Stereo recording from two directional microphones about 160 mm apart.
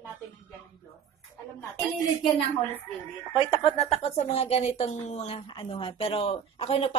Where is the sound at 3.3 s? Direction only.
40° left (ahead or behind).